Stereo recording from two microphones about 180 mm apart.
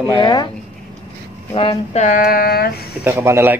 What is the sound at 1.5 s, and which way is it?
Speech, 35° left (ahead or behind).